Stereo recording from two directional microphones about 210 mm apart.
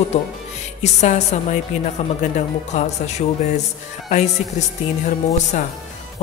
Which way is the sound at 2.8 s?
30° left (ahead or behind).